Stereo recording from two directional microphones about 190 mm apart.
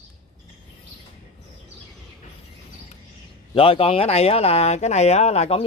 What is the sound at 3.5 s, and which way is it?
Speech, 30° left (ahead or behind).